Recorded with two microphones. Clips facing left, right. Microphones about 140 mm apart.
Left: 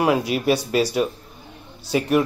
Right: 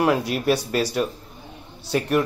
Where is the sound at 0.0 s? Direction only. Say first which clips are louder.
Left 1 dB; 5° left (ahead or behind).